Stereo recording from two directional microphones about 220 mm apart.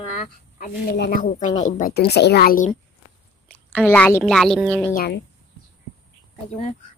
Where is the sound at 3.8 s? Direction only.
10° left (ahead or behind).